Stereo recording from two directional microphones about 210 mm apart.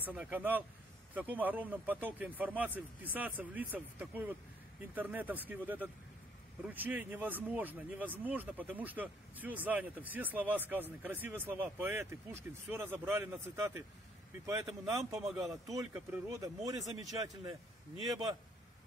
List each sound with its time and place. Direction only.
0.0 s speech: 5° right (ahead or behind)
15.2 s speech: centre (ahead or behind); by 17.6 s 15° right (ahead or behind)